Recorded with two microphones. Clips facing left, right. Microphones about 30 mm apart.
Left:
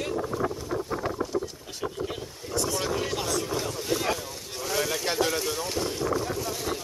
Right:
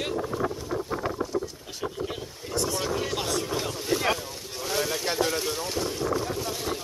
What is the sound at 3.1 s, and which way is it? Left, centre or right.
Boat, centre.